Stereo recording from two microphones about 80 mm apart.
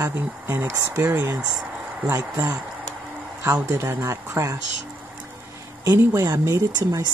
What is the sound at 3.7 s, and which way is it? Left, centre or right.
Speech, right.